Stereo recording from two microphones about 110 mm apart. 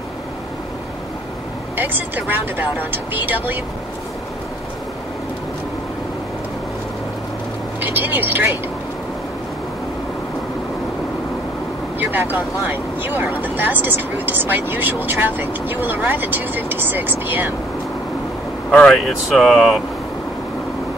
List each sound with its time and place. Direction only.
1.8 s speech: 15° right (ahead or behind)
7.8 s speech: 15° right (ahead or behind)
12.0 s speech: 15° right (ahead or behind)
18.7 s speech: 5° left (ahead or behind)